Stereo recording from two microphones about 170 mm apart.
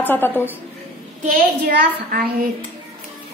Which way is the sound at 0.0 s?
10° left (ahead or behind).